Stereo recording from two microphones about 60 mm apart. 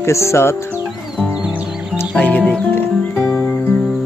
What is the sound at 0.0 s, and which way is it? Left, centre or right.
Speech, left.